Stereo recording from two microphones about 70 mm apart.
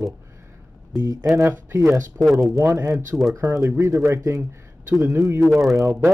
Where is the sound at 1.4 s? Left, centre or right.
Right.